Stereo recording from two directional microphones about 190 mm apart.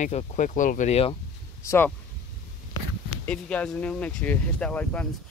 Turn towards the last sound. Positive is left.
turn(degrees=10)  # may be behind; listen again after turning